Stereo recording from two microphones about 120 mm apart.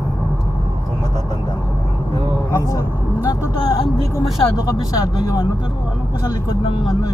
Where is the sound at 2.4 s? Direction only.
25° left (ahead or behind).